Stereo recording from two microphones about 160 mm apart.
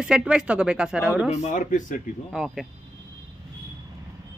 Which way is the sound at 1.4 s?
50° left (ahead or behind).